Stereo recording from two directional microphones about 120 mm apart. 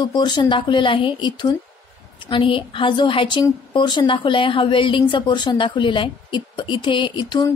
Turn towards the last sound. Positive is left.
turn(degrees=40)  # may be behind; listen again after turning